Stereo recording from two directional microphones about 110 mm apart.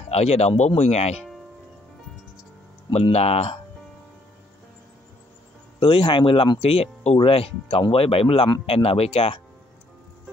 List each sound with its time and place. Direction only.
0.1 s speech: 75° left (ahead or behind)
2.9 s speech: 70° left (ahead or behind)
5.8 s speech: 55° left (ahead or behind)